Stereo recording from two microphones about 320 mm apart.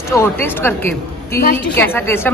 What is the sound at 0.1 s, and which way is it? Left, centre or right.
A woman's voice, centre.